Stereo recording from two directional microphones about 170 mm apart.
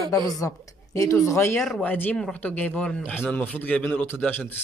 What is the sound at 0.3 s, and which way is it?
Speech, 20° left (ahead or behind).